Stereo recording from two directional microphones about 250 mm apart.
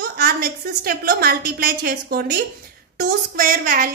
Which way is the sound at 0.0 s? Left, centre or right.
Right.